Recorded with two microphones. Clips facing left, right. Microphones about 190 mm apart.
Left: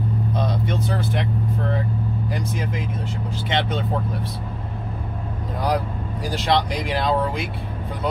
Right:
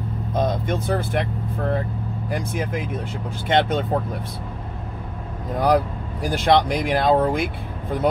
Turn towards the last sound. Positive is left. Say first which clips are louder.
# right 4 dB
turn(degrees=-50)  # may be behind; listen again after turning